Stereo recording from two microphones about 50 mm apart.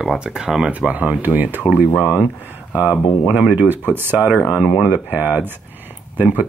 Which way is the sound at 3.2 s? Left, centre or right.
Centre.